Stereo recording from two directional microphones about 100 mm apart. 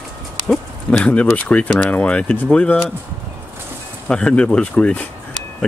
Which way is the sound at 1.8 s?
15° left (ahead or behind).